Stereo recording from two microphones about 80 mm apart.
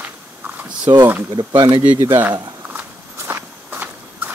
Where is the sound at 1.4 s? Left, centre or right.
Right.